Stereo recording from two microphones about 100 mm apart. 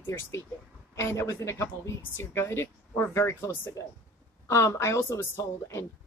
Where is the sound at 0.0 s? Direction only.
25° left (ahead or behind).